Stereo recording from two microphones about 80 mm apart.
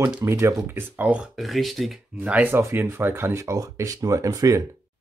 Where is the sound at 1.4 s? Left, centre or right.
Centre.